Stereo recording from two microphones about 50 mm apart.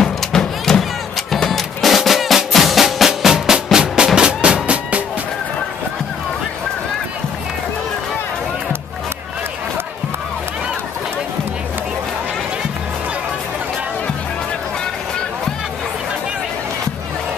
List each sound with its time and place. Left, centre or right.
0.0 s a sound: centre
1.3 s drum: centre
3.7 s music: centre